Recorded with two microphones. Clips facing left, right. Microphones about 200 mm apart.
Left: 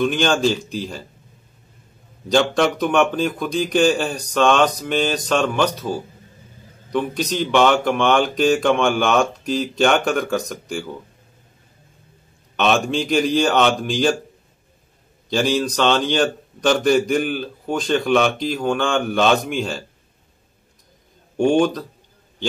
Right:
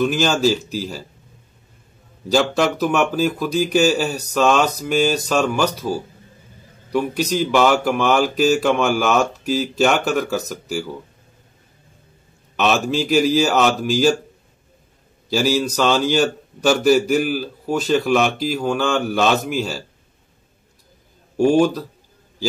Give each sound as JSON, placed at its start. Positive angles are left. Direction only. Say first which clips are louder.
{"t": 0.0, "sound": "a man's voice", "louder": "right 1 dB", "side_deg": -5}
{"t": 2.2, "sound": "a man's voice", "louder": "even", "side_deg": -5}
{"t": 12.5, "sound": "a man's voice", "louder": "even", "side_deg": -5}
{"t": 15.2, "sound": "a man's voice", "louder": "right 1 dB", "side_deg": -5}
{"t": 21.4, "sound": "a man's voice", "louder": "right 1 dB", "side_deg": -5}